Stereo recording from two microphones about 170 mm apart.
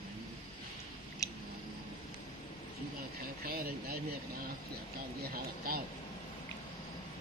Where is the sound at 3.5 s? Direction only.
65° right (ahead or behind).